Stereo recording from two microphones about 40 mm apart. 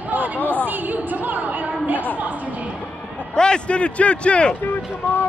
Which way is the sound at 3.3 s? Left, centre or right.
Left.